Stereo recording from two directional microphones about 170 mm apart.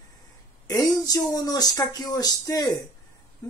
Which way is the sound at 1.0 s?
20° left (ahead or behind).